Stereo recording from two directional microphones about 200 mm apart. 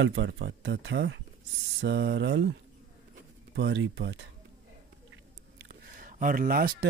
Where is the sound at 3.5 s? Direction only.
60° right (ahead or behind).